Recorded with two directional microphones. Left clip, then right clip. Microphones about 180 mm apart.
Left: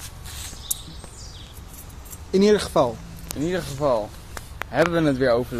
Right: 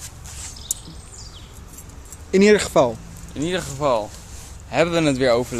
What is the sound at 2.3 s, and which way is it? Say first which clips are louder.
Speech: right 3 dB; 45° right (ahead or behind).